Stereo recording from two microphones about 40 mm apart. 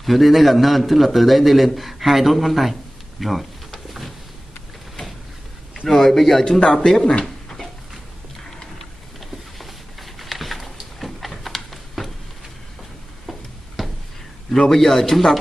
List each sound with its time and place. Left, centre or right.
0.0 s a man's voice: centre
5.9 s a man's voice: centre
6.6 s a man's voice: centre
6.9 s a man's voice: centre
8.7 s a sound: centre
13.8 s a sound: centre
14.5 s a man's voice: centre